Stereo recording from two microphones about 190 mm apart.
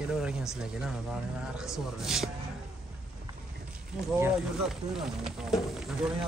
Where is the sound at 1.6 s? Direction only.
Centre (ahead or behind).